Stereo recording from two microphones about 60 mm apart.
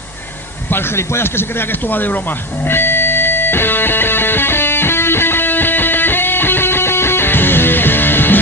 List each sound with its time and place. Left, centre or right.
0.7 s speech: left
2.7 s music: left